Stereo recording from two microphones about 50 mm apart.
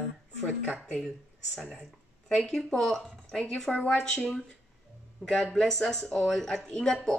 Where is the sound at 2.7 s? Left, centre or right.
Centre.